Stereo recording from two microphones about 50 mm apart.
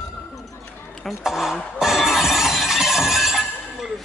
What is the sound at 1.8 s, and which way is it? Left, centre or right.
Shatter, centre.